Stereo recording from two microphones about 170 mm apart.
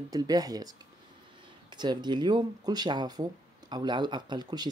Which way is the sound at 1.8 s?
25° right (ahead or behind).